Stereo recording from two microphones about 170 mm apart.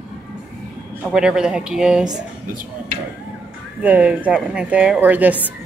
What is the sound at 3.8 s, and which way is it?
A woman's voice, 10° right (ahead or behind).